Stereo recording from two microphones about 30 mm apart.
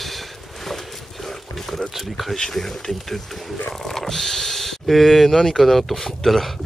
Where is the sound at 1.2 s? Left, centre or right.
Centre.